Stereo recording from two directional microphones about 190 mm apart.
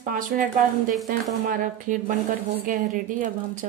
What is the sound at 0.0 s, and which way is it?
Speech, 45° right (ahead or behind).